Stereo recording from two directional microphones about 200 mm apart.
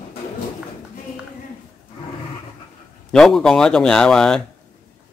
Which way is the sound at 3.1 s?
Centre (ahead or behind).